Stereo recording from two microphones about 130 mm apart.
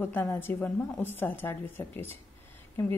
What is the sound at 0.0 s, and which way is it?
Speech, 15° left (ahead or behind).